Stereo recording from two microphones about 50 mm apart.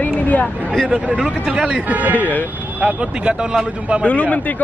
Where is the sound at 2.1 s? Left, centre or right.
Left.